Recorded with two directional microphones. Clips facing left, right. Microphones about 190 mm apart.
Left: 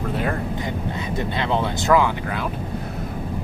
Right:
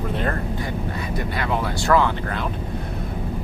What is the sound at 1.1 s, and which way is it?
Speech, 25° left (ahead or behind).